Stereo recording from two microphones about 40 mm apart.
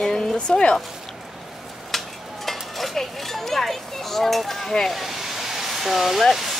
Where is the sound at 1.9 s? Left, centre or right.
Centre.